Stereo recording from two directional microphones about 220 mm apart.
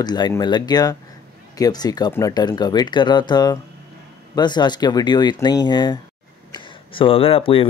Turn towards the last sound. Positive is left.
turn(degrees=25)  # may be behind; listen again after turning